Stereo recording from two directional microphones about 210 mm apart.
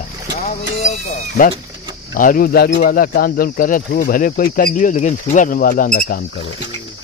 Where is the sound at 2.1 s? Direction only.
40° left (ahead or behind).